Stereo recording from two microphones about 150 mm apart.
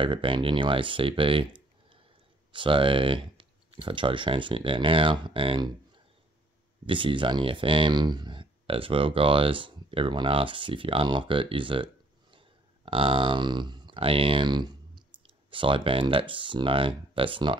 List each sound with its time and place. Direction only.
0.0 s speech: 35° right (ahead or behind)
6.9 s speech: 35° right (ahead or behind)